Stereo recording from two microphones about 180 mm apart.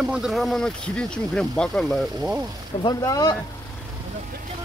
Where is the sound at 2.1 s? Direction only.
20° right (ahead or behind).